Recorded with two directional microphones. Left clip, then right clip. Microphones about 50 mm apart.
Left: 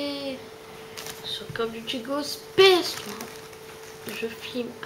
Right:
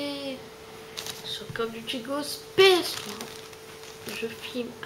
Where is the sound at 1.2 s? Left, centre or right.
Centre.